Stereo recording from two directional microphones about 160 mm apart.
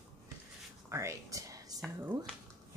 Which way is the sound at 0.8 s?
20° right (ahead or behind).